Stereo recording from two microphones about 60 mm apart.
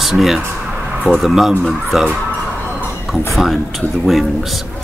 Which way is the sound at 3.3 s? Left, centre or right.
Centre.